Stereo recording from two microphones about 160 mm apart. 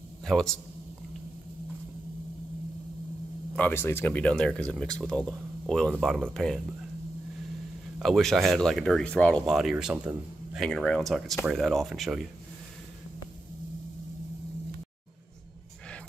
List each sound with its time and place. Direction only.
0.2 s a man's voice: centre (ahead or behind)
3.5 s speech: 10° left (ahead or behind)
8.0 s speech: centre (ahead or behind)
9.5 s speech: 5° right (ahead or behind)